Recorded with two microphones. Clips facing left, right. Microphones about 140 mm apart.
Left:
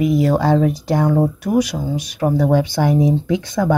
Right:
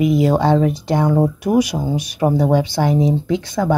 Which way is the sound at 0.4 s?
Centre (ahead or behind).